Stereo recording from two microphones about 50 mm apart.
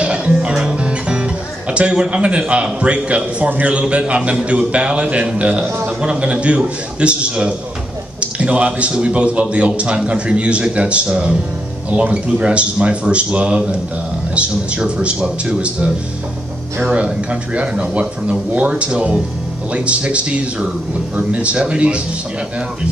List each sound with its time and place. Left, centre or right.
0.0 s speech: right
16.9 s speech: right